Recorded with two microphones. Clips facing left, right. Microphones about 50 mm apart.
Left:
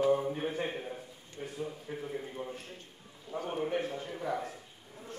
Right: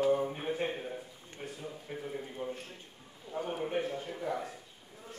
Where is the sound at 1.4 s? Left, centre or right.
Right.